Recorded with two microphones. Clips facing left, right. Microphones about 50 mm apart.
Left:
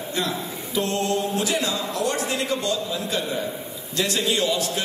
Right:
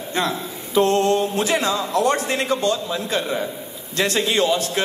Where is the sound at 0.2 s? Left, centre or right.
Right.